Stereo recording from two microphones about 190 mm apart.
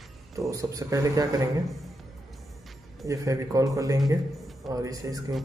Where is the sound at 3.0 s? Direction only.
15° right (ahead or behind).